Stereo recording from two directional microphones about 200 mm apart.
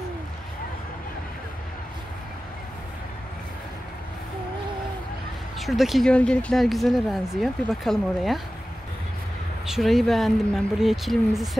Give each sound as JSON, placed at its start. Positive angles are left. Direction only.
{"t": 5.6, "sound": "speech", "side_deg": 0}
{"t": 9.7, "sound": "speech", "side_deg": 0}